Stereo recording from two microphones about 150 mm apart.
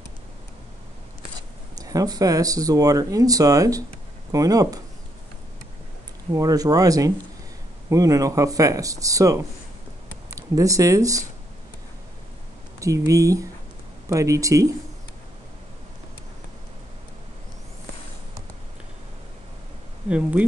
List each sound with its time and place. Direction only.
1.8 s speech: 25° right (ahead or behind)
6.3 s speech: 25° right (ahead or behind)
12.8 s speech: 20° right (ahead or behind)
20.1 s speech: 10° right (ahead or behind)